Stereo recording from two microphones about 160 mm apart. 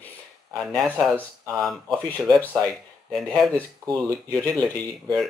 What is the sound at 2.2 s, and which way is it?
Speech, 20° right (ahead or behind).